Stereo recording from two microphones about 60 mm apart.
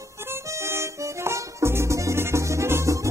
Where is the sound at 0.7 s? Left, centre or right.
Right.